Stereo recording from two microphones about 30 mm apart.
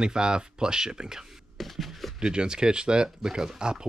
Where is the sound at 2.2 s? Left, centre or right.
Right.